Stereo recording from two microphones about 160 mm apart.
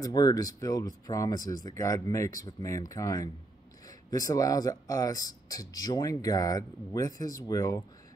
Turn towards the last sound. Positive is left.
turn(degrees=20)  # may be behind; listen again after turning